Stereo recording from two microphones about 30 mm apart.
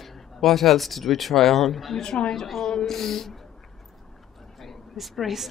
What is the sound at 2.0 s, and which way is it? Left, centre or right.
A woman's voice, left.